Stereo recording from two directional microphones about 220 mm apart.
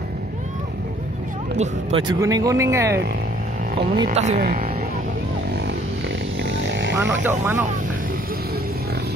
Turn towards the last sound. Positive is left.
turn(degrees=-10)  # may be behind; listen again after turning